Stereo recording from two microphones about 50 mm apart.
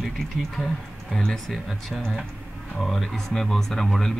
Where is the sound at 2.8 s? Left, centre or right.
Centre.